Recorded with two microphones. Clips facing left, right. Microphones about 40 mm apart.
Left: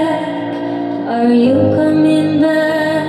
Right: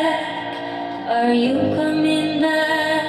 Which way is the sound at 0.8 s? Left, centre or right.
Centre.